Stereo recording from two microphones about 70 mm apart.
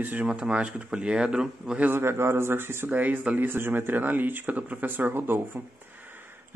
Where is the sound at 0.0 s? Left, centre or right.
Right.